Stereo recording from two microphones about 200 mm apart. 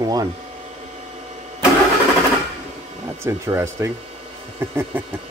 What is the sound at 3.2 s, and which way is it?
Speech, 15° right (ahead or behind).